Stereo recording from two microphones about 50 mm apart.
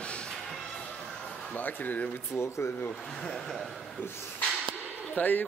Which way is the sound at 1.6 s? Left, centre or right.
Left.